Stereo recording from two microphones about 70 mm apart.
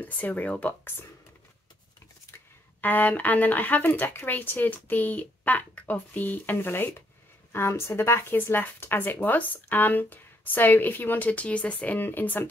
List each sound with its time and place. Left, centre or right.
0.0 s speech: left
2.3 s speech: left